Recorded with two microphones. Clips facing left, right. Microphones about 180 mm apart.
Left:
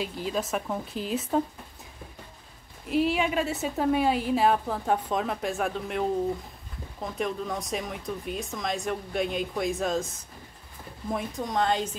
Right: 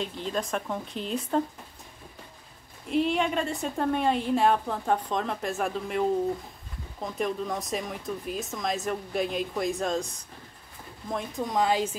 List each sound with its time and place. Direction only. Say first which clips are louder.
0.0 s a woman's voice: left 1 dB; 5° left (ahead or behind)
2.9 s a woman's voice: even; 5° left (ahead or behind)